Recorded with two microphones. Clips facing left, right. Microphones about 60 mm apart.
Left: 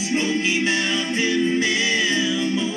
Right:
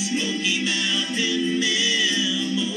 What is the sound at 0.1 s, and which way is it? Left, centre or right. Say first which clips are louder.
Music: left 6 dB; left.